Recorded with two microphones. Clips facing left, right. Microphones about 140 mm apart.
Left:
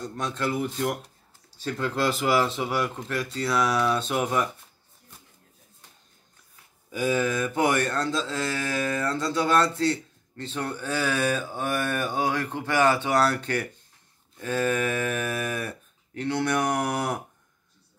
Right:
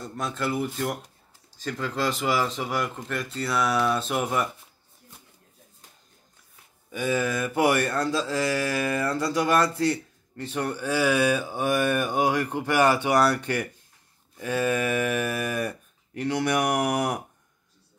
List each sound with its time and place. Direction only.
0.0 s speech: 5° right (ahead or behind)
6.9 s mantra: centre (ahead or behind); by 17.2 s 15° right (ahead or behind)